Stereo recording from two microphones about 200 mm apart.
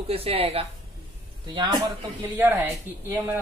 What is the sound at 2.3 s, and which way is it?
Speech, 10° right (ahead or behind).